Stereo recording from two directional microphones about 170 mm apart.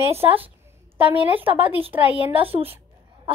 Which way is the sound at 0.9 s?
10° right (ahead or behind).